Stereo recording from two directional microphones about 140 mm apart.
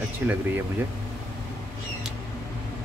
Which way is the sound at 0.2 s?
10° right (ahead or behind).